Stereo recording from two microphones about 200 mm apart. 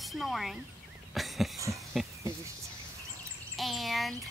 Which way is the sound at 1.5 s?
15° right (ahead or behind).